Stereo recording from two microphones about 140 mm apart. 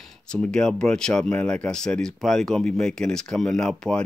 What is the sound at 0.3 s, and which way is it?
Speech, 5° left (ahead or behind).